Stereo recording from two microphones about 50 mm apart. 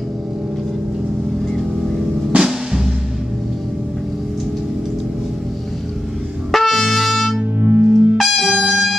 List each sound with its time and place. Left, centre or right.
2.3 s music: centre
6.5 s brass instrument: centre
7.6 s music: right
8.2 s music: centre